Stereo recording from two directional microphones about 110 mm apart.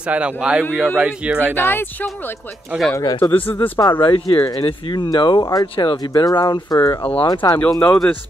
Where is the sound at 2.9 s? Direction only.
35° left (ahead or behind).